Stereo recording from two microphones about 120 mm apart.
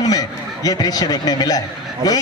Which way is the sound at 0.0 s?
30° left (ahead or behind).